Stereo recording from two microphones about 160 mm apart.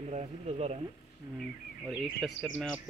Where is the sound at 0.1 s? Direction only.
45° right (ahead or behind).